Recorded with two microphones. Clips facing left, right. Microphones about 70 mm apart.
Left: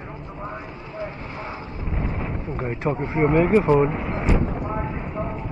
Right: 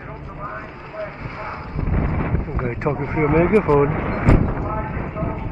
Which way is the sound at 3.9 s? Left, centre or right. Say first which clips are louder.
Right 5 dB; right.